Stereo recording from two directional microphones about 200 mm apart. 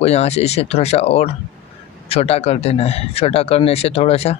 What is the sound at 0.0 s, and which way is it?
Speech, 35° left (ahead or behind).